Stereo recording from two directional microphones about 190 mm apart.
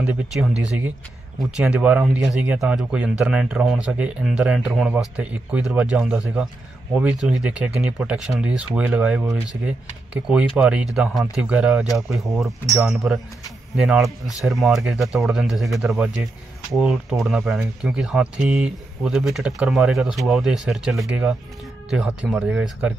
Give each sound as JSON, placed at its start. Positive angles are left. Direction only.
{"t": 0.0, "sound": "speech", "side_deg": -5}
{"t": 10.2, "sound": "speech", "side_deg": -5}